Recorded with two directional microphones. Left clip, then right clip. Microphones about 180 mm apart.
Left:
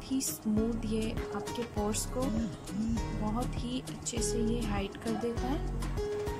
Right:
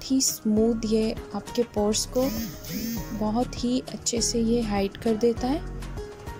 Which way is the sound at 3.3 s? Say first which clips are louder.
Right 10 dB; 25° right (ahead or behind).